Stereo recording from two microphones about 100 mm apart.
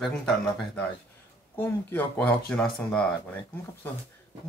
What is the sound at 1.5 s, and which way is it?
Speech, 15° left (ahead or behind).